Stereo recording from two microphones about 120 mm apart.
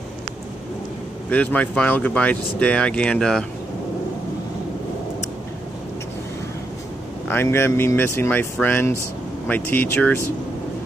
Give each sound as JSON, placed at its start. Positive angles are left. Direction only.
{"t": 1.3, "sound": "speech", "side_deg": 10}
{"t": 7.2, "sound": "speech", "side_deg": 20}